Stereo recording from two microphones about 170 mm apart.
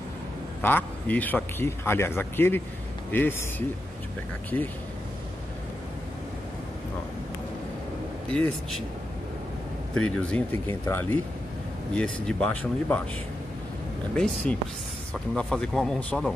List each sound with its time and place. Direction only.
0.6 s speech: 10° left (ahead or behind)
8.3 s speech: 5° left (ahead or behind)
9.9 s speech: 5° left (ahead or behind)
14.1 s speech: 5° left (ahead or behind)